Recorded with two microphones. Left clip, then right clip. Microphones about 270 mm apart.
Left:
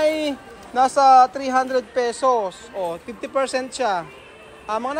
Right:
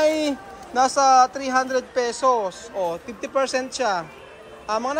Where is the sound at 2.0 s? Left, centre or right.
Centre.